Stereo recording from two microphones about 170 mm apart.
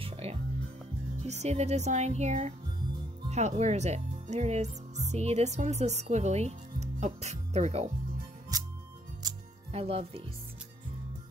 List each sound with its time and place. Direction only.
0.0 s music: 35° right (ahead or behind)
1.2 s speech: 40° right (ahead or behind)
8.5 s music: 20° right (ahead or behind)
9.7 s speech: 35° right (ahead or behind)